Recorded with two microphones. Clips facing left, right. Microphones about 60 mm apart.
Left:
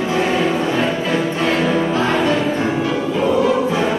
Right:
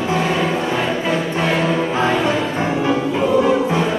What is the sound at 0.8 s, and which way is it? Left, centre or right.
Music, centre.